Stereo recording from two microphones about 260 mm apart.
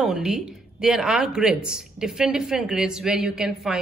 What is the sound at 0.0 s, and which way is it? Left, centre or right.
Speech, centre.